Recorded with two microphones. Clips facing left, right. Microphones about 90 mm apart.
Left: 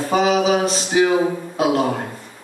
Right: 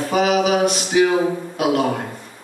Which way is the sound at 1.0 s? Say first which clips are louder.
Even; 10° left (ahead or behind).